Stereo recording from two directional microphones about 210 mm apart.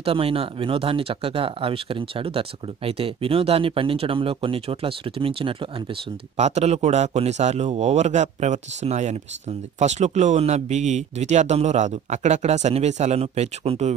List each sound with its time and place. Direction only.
0.0 s speech: 25° right (ahead or behind)